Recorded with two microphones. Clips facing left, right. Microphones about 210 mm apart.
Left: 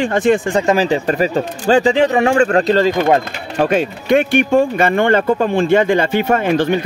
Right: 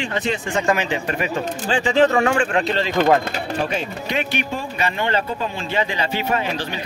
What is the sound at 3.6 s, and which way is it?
Speech, 50° left (ahead or behind).